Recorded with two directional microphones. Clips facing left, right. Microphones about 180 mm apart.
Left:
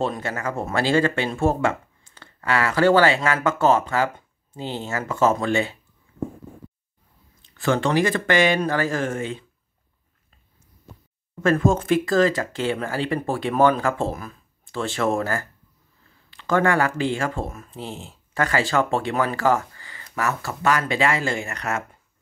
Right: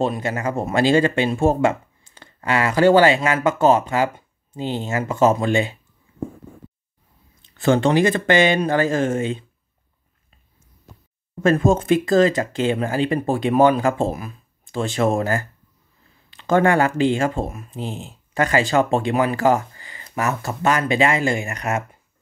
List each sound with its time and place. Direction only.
0.0 s speech: 15° right (ahead or behind)
7.5 s speech: 25° right (ahead or behind)
11.4 s speech: 20° right (ahead or behind)